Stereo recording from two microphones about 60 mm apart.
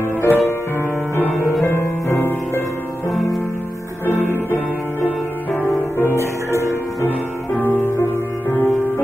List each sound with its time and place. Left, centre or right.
0.2 s music: left
1.7 s music: left
4.0 s music: left
5.9 s music: left
8.5 s music: left